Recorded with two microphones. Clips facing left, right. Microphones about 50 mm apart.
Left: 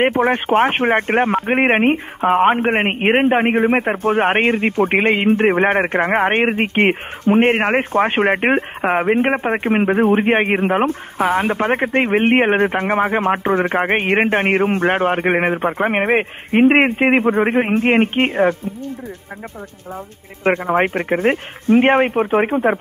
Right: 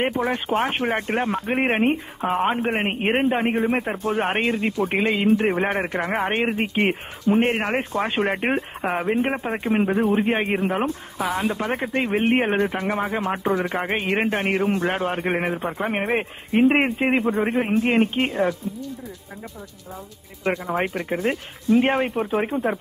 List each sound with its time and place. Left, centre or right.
0.0 s speech: left
20.4 s speech: left